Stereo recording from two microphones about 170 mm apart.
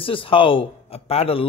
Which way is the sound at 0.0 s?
30° left (ahead or behind).